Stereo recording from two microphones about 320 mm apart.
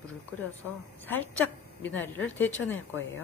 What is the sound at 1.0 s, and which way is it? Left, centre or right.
A woman's voice, centre.